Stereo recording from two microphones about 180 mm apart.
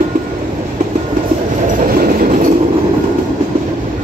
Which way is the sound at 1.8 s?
50° right (ahead or behind).